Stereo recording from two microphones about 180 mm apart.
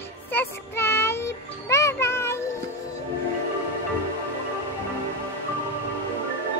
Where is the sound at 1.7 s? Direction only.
15° left (ahead or behind).